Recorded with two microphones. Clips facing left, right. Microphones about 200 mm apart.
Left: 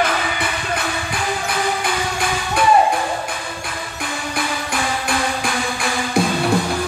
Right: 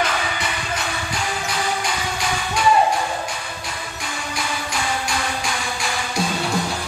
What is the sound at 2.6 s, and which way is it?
Music, 55° left (ahead or behind).